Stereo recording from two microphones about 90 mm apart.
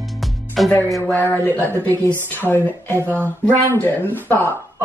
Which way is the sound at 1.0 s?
20° left (ahead or behind).